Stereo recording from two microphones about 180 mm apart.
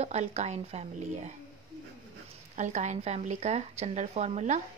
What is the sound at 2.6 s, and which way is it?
Speech, 40° right (ahead or behind).